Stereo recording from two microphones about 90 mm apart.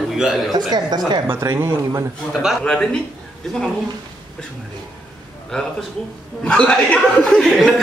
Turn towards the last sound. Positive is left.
turn(degrees=10)  # may be behind; listen again after turning